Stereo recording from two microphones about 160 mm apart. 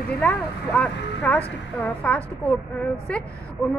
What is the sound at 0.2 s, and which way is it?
A woman's voice, 10° left (ahead or behind).